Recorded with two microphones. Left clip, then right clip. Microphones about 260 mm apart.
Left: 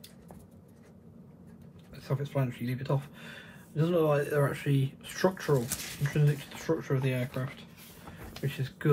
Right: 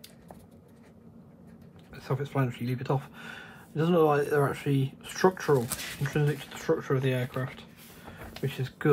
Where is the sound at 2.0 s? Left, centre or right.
Right.